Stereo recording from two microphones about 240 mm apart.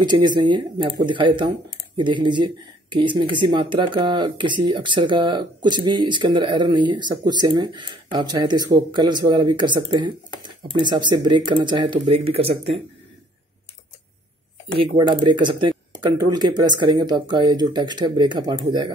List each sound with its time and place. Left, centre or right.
0.0 s speech: centre
14.8 s speech: centre